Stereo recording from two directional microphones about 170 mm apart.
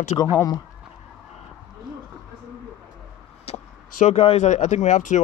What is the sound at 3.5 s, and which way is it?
Speech, 40° left (ahead or behind).